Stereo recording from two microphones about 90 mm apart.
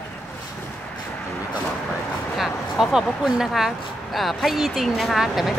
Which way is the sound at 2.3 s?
Centre (ahead or behind).